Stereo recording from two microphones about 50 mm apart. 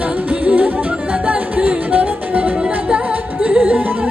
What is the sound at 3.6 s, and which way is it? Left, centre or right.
Music, right.